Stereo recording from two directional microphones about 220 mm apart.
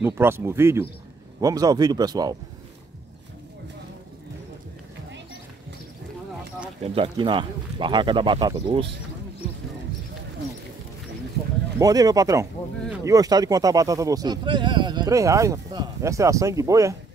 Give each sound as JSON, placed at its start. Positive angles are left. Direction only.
{"t": 0.0, "sound": "speech", "side_deg": -10}
{"t": 6.8, "sound": "speech", "side_deg": -25}
{"t": 11.8, "sound": "speech", "side_deg": -15}